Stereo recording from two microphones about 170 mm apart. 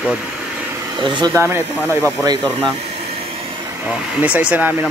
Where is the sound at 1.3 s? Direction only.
15° right (ahead or behind).